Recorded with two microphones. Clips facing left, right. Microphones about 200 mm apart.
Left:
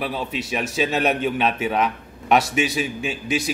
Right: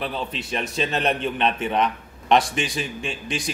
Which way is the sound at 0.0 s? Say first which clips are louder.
Left 2 dB; 5° left (ahead or behind).